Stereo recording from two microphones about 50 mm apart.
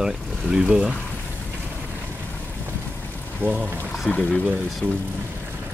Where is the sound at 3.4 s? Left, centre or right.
Right.